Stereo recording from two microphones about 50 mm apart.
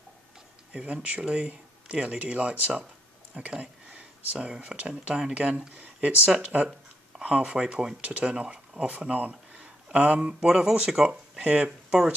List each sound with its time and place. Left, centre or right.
1.0 s speech: right
3.4 s speech: centre
8.0 s speech: right
10.5 s speech: centre